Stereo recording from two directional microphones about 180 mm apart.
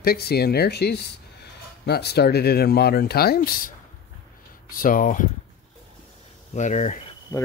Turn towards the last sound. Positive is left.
turn(degrees=15)  # may be behind; listen again after turning